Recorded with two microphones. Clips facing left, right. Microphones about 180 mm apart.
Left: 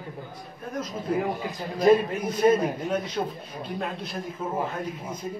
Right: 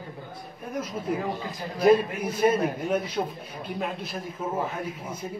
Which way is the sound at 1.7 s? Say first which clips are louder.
Even; 10° right (ahead or behind).